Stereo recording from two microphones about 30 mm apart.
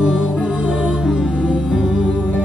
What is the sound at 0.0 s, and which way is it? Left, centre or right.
Music, right.